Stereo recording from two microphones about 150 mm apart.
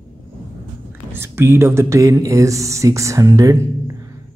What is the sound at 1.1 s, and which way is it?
Speech, 15° right (ahead or behind).